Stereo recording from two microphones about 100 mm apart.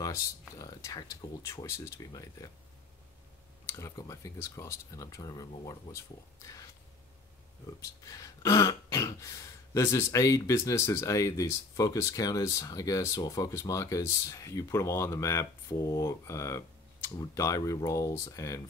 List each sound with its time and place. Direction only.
0.0 s a sound: 35° left (ahead or behind)
1.4 s speech: 30° left (ahead or behind)
3.6 s speech: 30° left (ahead or behind)
7.8 s speech: 35° left (ahead or behind)